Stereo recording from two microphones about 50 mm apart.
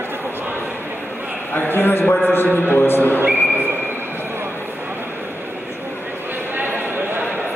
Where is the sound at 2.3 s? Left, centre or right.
Left.